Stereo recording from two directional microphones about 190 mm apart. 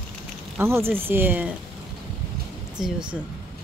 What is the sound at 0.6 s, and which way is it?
Speech, 10° right (ahead or behind).